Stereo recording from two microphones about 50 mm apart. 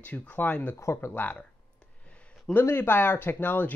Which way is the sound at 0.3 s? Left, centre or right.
Left.